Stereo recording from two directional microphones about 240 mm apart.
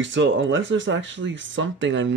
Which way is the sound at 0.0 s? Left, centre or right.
Right.